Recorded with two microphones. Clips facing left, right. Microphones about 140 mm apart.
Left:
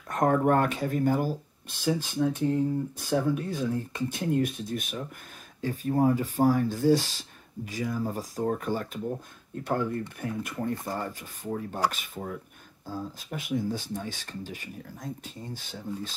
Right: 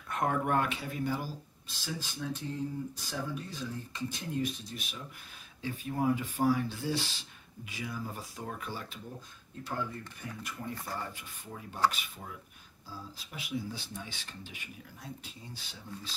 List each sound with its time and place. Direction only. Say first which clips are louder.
0.1 s speech: left 7 dB; 40° left (ahead or behind)